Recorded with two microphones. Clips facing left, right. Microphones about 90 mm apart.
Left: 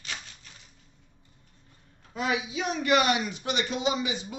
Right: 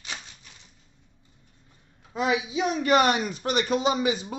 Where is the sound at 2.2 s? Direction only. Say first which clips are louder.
Right 4 dB; 25° right (ahead or behind).